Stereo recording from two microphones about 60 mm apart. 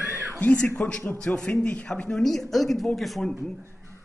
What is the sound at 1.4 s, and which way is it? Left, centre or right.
A man's voice, centre.